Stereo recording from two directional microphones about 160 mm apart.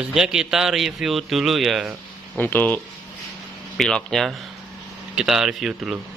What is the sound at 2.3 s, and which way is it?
A man's voice, 10° left (ahead or behind).